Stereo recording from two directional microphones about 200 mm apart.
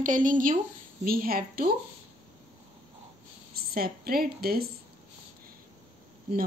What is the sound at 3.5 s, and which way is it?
A woman's voice, 50° right (ahead or behind).